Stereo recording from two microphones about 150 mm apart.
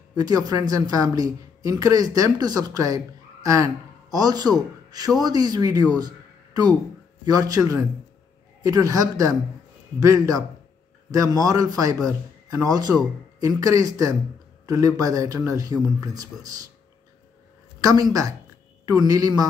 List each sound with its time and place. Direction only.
0.1 s speech: 25° right (ahead or behind)
5.9 s a sound: 25° right (ahead or behind)
7.2 s speech: 25° right (ahead or behind)
17.7 s speech: 25° right (ahead or behind)